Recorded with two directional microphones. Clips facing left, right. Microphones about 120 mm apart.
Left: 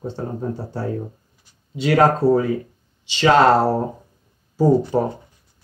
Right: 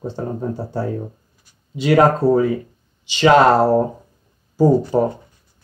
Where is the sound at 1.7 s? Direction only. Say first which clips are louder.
Right 2 dB; 15° right (ahead or behind).